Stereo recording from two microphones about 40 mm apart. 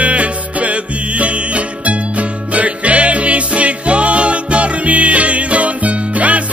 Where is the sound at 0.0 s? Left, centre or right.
Right.